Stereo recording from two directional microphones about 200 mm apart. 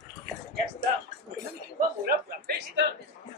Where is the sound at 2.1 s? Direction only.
55° right (ahead or behind).